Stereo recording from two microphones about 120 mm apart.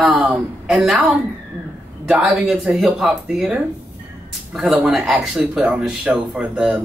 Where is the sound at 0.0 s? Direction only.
5° right (ahead or behind).